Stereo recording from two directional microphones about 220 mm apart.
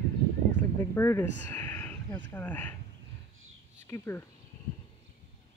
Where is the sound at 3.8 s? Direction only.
10° left (ahead or behind).